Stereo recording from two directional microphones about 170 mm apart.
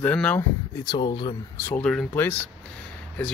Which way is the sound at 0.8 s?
25° left (ahead or behind).